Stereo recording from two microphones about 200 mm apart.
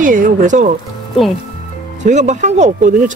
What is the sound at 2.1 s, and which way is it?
Speech, 35° right (ahead or behind).